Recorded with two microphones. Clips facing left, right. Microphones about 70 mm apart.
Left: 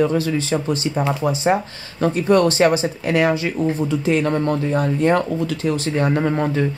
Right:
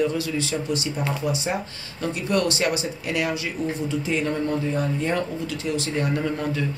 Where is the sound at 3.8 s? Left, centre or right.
Left.